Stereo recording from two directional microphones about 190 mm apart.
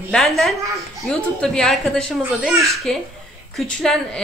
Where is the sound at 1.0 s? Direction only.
5° left (ahead or behind).